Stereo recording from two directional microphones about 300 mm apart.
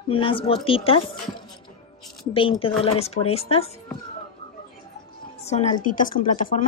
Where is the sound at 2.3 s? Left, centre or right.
Centre.